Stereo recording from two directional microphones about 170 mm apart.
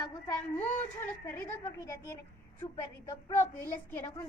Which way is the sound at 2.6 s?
15° left (ahead or behind).